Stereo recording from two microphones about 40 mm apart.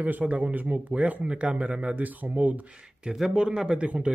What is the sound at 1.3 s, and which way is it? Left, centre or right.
Speech, right.